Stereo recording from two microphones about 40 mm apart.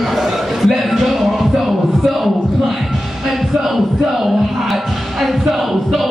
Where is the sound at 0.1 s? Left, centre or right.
Centre.